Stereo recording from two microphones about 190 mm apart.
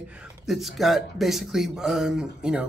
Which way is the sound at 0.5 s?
Centre (ahead or behind).